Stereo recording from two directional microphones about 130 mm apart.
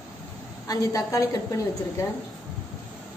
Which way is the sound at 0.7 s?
25° left (ahead or behind).